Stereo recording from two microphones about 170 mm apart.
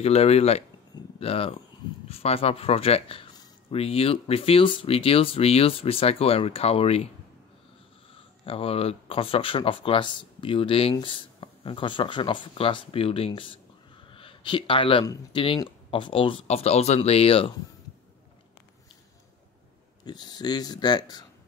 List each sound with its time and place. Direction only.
0.0 s speech: 35° left (ahead or behind)
8.5 s speech: 35° left (ahead or behind)
20.1 s speech: 25° left (ahead or behind)